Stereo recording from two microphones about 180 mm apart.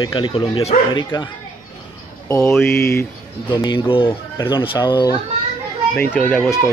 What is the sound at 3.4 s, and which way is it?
Speech, 25° left (ahead or behind).